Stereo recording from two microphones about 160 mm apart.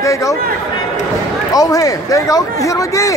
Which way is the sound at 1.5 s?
20° left (ahead or behind).